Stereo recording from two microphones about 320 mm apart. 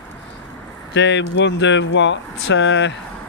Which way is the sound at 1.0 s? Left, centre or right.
Left.